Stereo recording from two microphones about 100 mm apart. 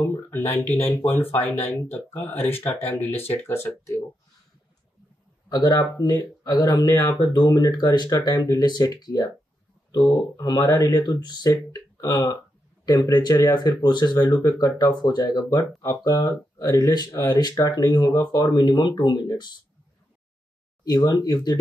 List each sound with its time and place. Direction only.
0.0 s speech: 25° left (ahead or behind)
5.5 s speech: 40° left (ahead or behind)
20.8 s speech: 45° left (ahead or behind)